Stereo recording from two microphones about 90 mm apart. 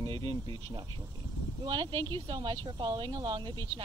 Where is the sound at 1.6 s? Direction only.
55° right (ahead or behind).